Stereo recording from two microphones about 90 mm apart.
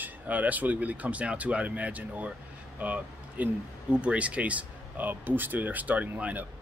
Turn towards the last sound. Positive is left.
turn(degrees=-15)  # may be behind; listen again after turning